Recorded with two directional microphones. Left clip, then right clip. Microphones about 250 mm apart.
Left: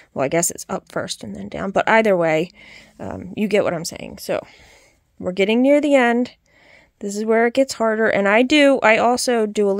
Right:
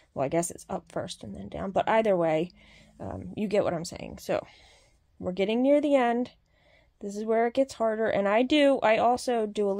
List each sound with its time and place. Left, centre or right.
0.1 s speech: left